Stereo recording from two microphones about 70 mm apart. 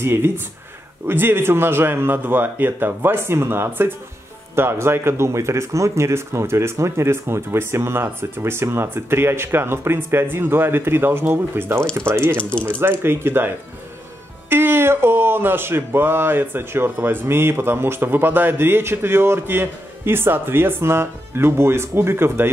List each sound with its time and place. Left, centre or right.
0.0 s speech: right
14.5 s speech: right